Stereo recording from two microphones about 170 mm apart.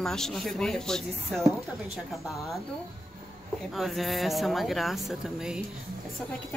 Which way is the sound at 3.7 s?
Centre (ahead or behind).